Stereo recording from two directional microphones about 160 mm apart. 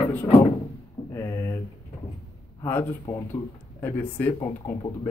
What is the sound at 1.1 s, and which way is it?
Speech, 15° left (ahead or behind).